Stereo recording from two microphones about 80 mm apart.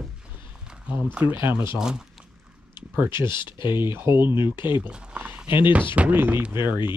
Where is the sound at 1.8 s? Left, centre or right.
Centre.